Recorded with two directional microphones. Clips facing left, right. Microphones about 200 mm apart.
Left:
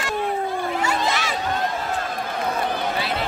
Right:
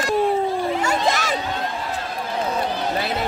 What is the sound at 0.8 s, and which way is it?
Crowd, 45° right (ahead or behind).